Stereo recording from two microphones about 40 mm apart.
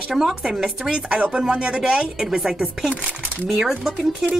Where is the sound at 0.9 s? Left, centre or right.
Right.